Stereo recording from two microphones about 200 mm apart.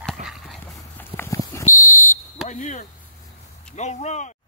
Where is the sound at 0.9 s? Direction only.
10° left (ahead or behind).